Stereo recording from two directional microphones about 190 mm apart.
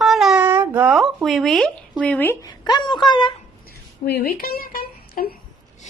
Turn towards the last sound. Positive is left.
turn(degrees=50)  # may be behind; listen again after turning